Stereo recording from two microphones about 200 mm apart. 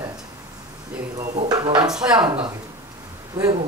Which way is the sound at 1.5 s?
20° right (ahead or behind).